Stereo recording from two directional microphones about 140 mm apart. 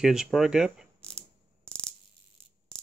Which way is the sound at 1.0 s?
5° left (ahead or behind).